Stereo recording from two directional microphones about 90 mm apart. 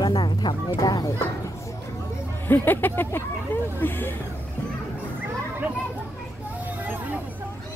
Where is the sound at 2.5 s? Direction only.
20° left (ahead or behind).